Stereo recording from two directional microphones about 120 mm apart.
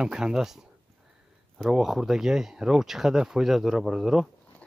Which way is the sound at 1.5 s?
Centre (ahead or behind).